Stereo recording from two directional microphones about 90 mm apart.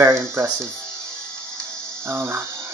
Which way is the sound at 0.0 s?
30° right (ahead or behind).